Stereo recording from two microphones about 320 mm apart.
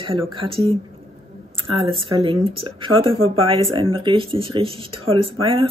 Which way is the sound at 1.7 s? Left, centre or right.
Centre.